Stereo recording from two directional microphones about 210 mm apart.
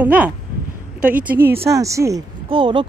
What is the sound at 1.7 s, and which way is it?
Speech, 15° right (ahead or behind).